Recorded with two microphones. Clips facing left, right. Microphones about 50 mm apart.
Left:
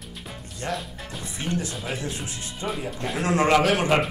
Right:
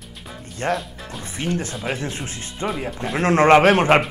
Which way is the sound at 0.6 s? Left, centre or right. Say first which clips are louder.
Right 7 dB; right.